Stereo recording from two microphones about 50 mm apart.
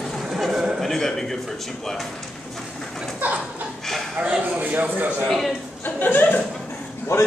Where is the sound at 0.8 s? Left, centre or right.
Centre.